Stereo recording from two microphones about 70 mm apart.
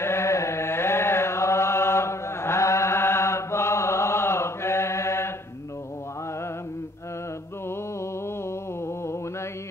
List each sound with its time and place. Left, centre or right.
0.0 s chant: left